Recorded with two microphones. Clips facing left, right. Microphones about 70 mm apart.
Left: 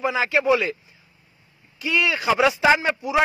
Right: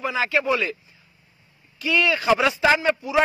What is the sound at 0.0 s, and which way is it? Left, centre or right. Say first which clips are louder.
Speech: left 2 dB; left.